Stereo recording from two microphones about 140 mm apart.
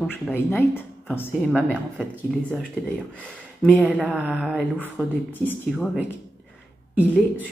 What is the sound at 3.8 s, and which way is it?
Speech, 10° right (ahead or behind).